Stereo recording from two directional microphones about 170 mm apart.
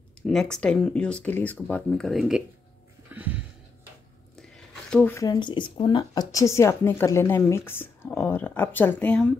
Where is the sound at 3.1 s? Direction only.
10° right (ahead or behind).